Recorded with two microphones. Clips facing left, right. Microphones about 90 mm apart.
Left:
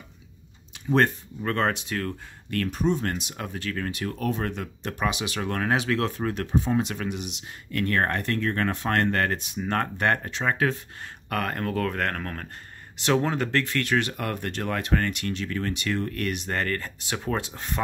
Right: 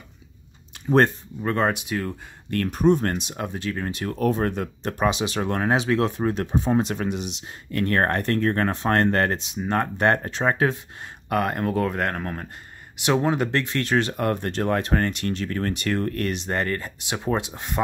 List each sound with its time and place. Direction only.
0.8 s speech: 35° right (ahead or behind)
1.4 s speech: 15° right (ahead or behind)
2.5 s speech: 45° right (ahead or behind)
3.2 s speech: 25° right (ahead or behind)
9.9 s speech: 30° right (ahead or behind)
11.2 s speech: 15° right (ahead or behind); by 16.3 s 45° right (ahead or behind)
16.3 s speech: 25° right (ahead or behind)